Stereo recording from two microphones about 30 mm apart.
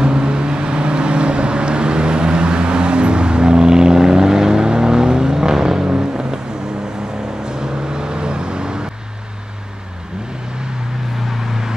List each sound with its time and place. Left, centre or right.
0.0 s vehicle: right
7.4 s vehicle: right